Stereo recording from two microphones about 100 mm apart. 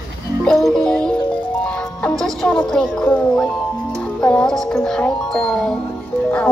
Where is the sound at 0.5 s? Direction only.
5° left (ahead or behind).